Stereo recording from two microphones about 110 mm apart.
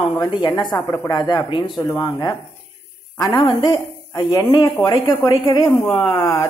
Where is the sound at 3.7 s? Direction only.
35° left (ahead or behind).